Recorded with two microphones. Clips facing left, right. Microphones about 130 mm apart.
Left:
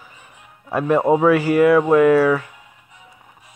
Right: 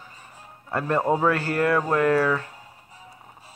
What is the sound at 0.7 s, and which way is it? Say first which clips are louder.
Speech: left 6 dB; 15° left (ahead or behind).